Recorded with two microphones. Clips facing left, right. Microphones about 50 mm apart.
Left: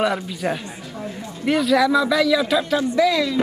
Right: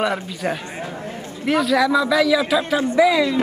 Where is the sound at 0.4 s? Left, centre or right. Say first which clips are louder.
Right 1 dB; centre.